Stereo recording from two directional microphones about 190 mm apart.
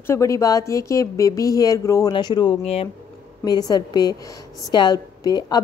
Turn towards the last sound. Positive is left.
turn(degrees=20)  # may be behind; listen again after turning